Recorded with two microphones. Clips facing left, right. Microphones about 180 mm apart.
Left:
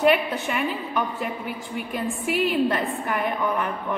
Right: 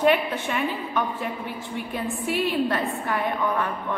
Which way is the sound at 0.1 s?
10° left (ahead or behind).